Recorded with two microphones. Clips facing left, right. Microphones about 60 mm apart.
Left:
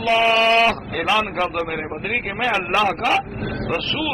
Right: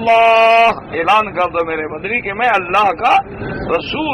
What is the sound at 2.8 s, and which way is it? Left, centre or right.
Speech, right.